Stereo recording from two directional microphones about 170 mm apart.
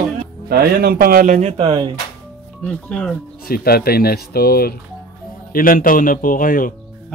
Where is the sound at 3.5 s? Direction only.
65° left (ahead or behind).